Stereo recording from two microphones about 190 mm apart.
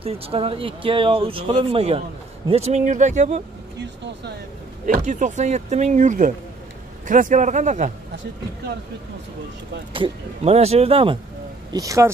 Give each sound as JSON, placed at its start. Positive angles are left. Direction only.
{"t": 0.0, "sound": "speech", "side_deg": -30}
{"t": 4.8, "sound": "speech", "side_deg": -40}
{"t": 9.9, "sound": "speech", "side_deg": -30}
{"t": 11.7, "sound": "speech", "side_deg": -15}